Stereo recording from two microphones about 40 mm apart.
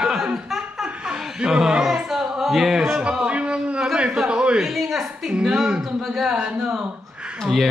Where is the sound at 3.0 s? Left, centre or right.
Right.